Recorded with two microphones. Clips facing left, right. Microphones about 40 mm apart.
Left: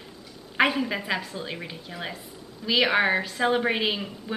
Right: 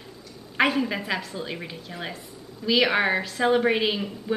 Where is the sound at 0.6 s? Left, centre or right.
Centre.